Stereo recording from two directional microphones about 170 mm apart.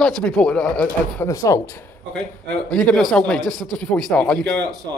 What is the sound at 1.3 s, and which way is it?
Speech, 20° left (ahead or behind).